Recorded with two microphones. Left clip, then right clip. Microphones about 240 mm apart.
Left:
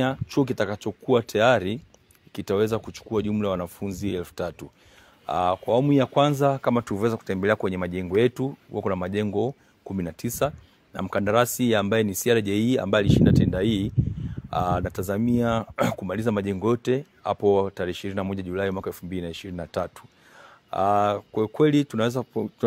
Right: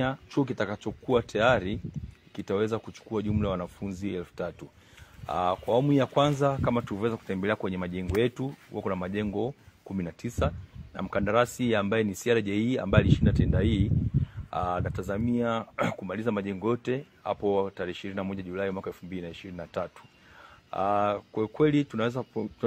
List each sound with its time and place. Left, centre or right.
0.0 s speech: left